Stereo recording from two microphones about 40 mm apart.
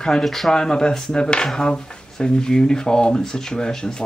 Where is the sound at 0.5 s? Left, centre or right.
Centre.